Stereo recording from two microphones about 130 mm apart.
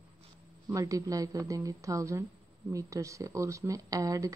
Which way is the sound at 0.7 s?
25° right (ahead or behind).